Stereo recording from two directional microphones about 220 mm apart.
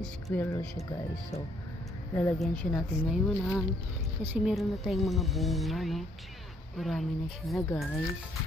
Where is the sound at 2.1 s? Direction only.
5° left (ahead or behind).